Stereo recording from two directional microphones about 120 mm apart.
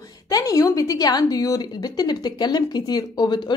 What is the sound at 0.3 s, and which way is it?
A woman's voice, 30° left (ahead or behind).